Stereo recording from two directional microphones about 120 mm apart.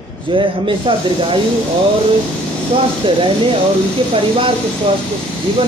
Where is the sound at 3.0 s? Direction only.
45° right (ahead or behind).